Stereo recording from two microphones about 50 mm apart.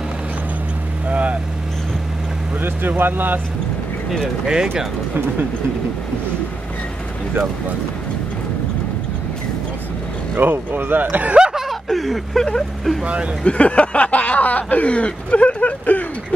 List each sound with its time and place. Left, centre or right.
1.0 s vehicle: right
3.0 s speech: right
4.5 s speech: centre
10.3 s speech: right
11.1 s chuckle: right
11.9 s speech: centre
13.0 s speech: right
13.4 s speech: left